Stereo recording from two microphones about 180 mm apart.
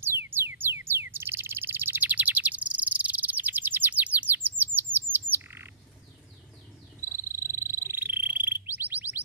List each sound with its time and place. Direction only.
0.0 s bird: 10° right (ahead or behind)
7.1 s frog: 15° right (ahead or behind)